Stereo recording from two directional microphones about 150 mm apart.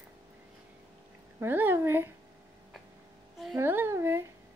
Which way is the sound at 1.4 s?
15° right (ahead or behind).